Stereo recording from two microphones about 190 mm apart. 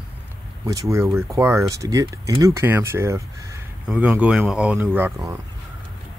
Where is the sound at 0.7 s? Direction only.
15° right (ahead or behind).